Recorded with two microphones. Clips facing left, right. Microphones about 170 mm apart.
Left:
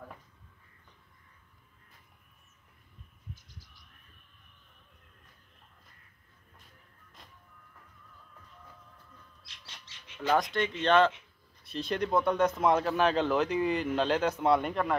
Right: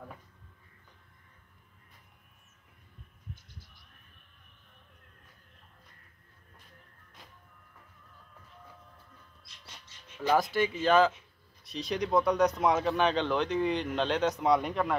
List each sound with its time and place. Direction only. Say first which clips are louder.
7.2 s printer: right 1 dB; centre (ahead or behind)
9.4 s bird: right 2 dB; 90° left
10.1 s speech: right 1 dB; 5° right (ahead or behind)